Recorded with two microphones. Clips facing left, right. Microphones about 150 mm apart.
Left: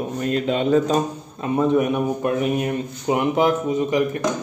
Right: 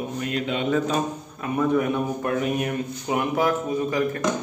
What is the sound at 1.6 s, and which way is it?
A man's voice, 20° left (ahead or behind).